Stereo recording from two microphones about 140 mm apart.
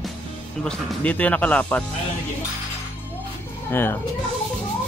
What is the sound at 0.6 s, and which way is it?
Speech, 10° left (ahead or behind).